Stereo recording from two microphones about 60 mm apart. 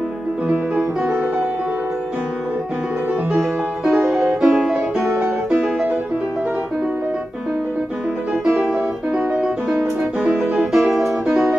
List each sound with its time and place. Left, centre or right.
0.5 s music: centre
3.3 s music: centre
8.5 s music: centre
8.7 s music: centre
10.3 s music: centre